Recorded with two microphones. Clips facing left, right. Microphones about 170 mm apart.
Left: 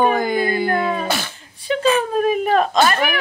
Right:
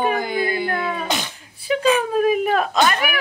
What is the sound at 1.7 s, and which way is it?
Speech, 10° right (ahead or behind).